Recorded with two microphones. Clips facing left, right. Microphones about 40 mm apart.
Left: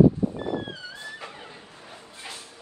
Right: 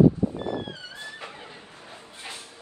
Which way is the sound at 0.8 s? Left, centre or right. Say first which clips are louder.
Left 1 dB; right.